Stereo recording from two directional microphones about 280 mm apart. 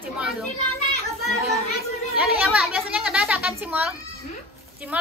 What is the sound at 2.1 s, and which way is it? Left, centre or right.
Speech, centre.